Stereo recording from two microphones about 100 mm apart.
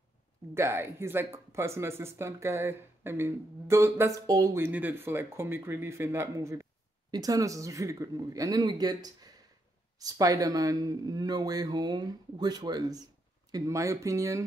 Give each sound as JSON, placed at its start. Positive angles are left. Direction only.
{"t": 0.6, "sound": "speech", "side_deg": -25}
{"t": 4.6, "sound": "speech", "side_deg": -20}